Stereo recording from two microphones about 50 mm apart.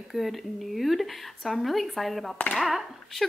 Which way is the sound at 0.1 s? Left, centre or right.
Centre.